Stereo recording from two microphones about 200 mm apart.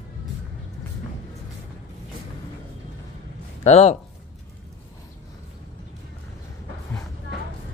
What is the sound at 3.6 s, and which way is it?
Speech, 30° left (ahead or behind).